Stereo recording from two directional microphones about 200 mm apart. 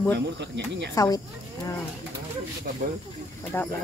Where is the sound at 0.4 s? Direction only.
60° right (ahead or behind).